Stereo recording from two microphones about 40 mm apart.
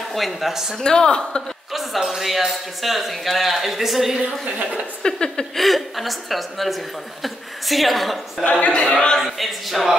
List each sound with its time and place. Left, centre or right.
0.1 s speech: centre
0.8 s a woman's voice: left
1.7 s a man's voice: centre
4.5 s a woman's voice: right
5.0 s speech: centre
5.6 s a man's voice: centre
8.5 s speech: left
8.9 s a woman's voice: left
9.2 s a man's voice: centre